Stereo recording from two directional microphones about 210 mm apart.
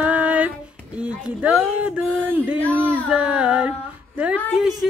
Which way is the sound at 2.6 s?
5° left (ahead or behind).